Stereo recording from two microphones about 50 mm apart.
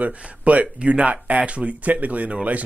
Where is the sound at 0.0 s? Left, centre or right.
Right.